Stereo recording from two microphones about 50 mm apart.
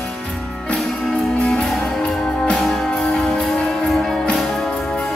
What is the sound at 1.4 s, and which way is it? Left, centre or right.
Music, centre.